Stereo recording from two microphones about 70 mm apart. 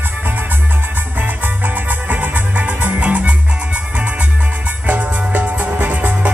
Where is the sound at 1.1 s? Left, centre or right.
Right.